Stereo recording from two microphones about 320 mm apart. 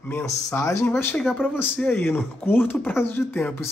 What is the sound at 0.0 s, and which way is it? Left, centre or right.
Speech, centre.